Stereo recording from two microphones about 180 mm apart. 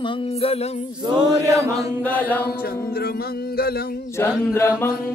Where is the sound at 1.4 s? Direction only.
15° right (ahead or behind).